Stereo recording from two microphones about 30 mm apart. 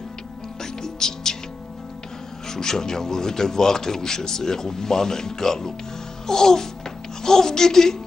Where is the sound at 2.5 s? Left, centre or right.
Centre.